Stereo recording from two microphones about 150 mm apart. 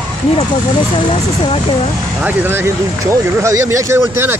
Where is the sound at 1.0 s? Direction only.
40° left (ahead or behind).